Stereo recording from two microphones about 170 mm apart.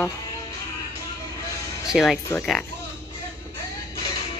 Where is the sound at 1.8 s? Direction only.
Centre (ahead or behind).